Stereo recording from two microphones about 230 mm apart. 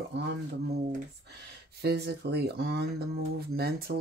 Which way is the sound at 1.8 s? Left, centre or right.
Right.